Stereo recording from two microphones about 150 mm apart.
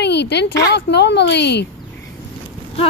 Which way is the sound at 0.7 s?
90° left.